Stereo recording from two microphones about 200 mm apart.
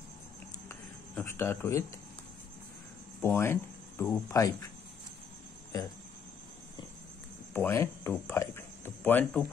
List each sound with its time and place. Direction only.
0.7 s a sound: 15° left (ahead or behind)
3.2 s speech: 10° left (ahead or behind)
7.5 s speech: 10° left (ahead or behind)